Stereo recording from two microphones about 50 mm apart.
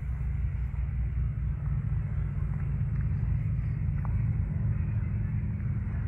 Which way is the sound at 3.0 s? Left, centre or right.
Centre.